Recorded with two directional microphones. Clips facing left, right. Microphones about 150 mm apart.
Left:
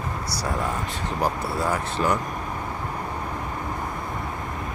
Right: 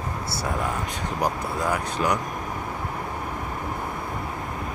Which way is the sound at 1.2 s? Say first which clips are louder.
Left 1 dB; 15° right (ahead or behind).